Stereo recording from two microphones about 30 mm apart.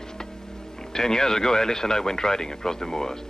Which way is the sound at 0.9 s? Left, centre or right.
Centre.